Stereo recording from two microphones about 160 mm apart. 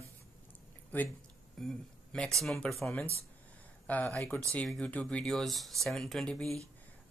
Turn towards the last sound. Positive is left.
turn(degrees=5)  # may be behind; listen again after turning